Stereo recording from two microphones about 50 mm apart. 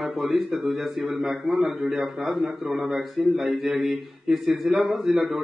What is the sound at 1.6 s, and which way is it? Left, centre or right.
Speech, centre.